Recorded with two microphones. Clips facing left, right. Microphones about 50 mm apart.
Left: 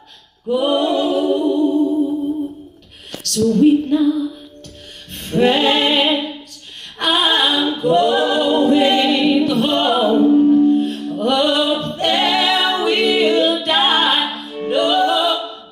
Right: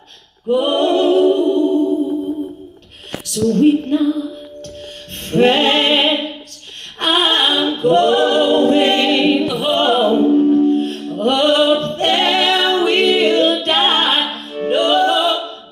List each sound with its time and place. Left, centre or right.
0.5 s music: right
3.4 s female singing: right
5.2 s music: right
7.0 s a capella: right
9.5 s music: centre
9.8 s music: right